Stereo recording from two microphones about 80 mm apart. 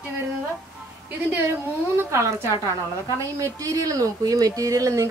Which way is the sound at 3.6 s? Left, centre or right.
Right.